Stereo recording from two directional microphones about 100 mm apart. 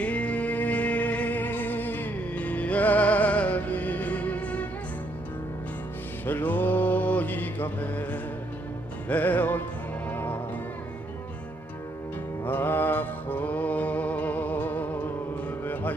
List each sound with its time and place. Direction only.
0.0 s music: 15° left (ahead or behind)
6.2 s music: 20° left (ahead or behind)
12.4 s music: 20° left (ahead or behind)